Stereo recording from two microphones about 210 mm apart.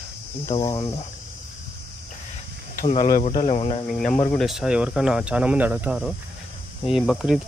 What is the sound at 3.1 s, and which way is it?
Speech, 40° left (ahead or behind).